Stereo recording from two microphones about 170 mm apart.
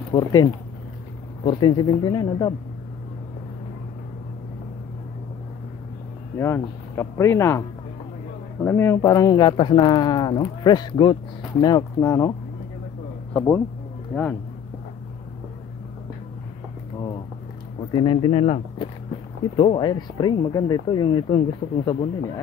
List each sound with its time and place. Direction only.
0.1 s speech: 25° left (ahead or behind)
6.3 s speech: 15° left (ahead or behind)
8.6 s speech: 15° left (ahead or behind)
17.9 s speech: 30° left (ahead or behind)